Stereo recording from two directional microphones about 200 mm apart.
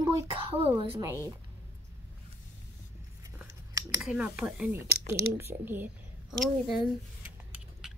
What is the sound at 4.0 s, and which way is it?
A child's voice, 5° right (ahead or behind).